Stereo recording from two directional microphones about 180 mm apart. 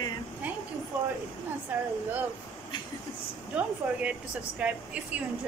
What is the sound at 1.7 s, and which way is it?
Speech, 10° right (ahead or behind).